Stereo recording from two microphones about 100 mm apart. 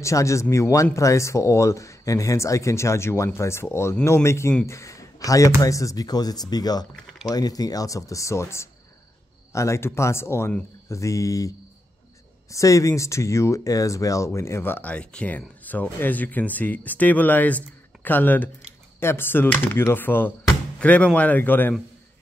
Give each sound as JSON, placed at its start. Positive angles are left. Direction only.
{"t": 0.0, "sound": "speech", "side_deg": 30}